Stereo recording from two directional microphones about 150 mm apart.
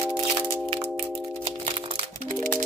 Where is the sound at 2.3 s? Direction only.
60° right (ahead or behind).